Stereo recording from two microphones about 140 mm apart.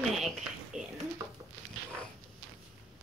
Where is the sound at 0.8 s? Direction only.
60° right (ahead or behind).